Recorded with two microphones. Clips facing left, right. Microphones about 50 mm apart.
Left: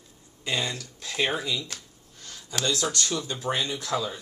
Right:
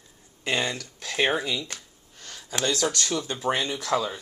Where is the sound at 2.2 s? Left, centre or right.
Right.